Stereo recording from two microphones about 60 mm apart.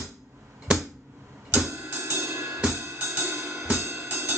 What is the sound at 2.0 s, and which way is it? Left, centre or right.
Cymbal, right.